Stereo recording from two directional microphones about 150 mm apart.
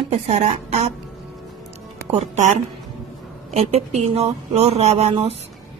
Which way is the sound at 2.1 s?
50° right (ahead or behind).